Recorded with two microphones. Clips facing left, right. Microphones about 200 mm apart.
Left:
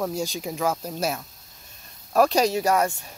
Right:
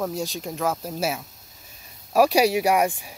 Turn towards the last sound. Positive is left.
turn(degrees=-15)  # may be behind; listen again after turning